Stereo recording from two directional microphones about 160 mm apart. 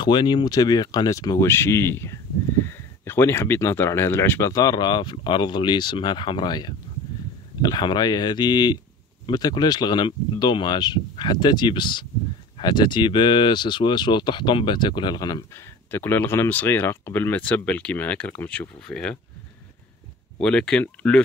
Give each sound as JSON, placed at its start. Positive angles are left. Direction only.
{"t": 0.0, "sound": "speech", "side_deg": 30}
{"t": 15.9, "sound": "speech", "side_deg": 15}
{"t": 20.4, "sound": "speech", "side_deg": 5}